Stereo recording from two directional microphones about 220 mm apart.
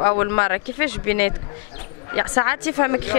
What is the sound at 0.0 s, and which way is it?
Speech, 15° left (ahead or behind).